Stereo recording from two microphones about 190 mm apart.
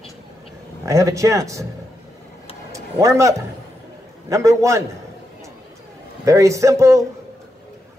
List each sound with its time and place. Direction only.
0.8 s speech: 15° right (ahead or behind)
2.7 s a man's voice: 15° right (ahead or behind)
6.2 s speech: 15° right (ahead or behind)